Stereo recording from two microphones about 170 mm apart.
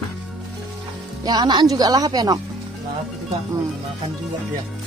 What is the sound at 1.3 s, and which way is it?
Speech, 25° right (ahead or behind).